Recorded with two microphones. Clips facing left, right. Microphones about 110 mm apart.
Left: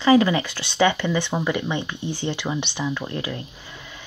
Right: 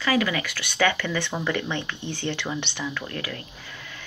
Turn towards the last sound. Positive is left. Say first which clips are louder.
# left 1 dB
turn(degrees=20)  # may be behind; listen again after turning